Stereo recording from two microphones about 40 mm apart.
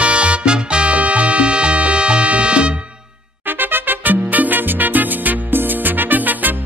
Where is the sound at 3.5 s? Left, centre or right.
Right.